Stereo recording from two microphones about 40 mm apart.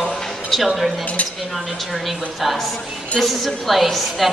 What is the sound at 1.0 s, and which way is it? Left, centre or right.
Speech, left.